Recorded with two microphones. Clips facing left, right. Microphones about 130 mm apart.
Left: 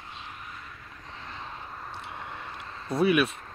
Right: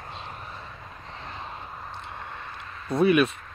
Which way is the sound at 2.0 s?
5° left (ahead or behind).